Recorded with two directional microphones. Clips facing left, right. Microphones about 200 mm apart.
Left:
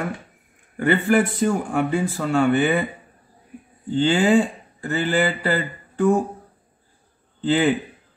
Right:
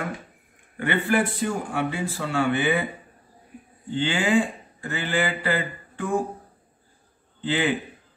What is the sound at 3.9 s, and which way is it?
Speech, 40° left (ahead or behind).